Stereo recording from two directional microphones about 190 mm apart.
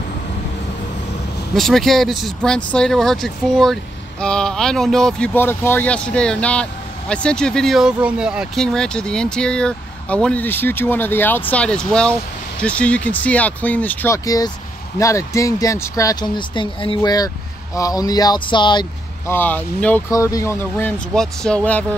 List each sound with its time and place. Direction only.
1.5 s speech: centre (ahead or behind); by 19.3 s 25° left (ahead or behind)
19.3 s speech: 10° left (ahead or behind)